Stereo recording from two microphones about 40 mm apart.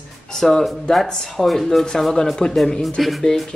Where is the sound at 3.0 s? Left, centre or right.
Centre.